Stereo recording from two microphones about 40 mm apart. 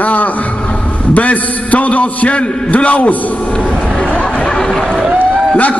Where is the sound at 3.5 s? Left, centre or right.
Left.